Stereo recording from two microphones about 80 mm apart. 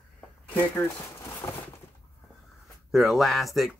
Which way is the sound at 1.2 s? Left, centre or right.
Left.